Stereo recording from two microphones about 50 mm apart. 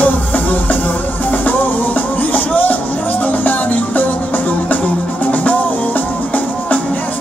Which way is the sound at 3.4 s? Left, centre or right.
Left.